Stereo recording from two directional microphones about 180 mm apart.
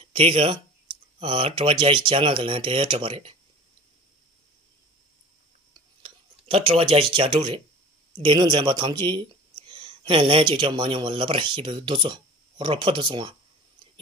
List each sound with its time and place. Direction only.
0.0 s speech: 30° right (ahead or behind)
6.0 s speech: 30° right (ahead or behind)